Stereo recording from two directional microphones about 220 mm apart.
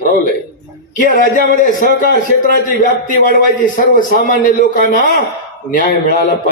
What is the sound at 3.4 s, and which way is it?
A man's voice, 35° left (ahead or behind).